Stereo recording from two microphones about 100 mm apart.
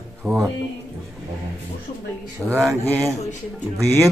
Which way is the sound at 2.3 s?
25° right (ahead or behind).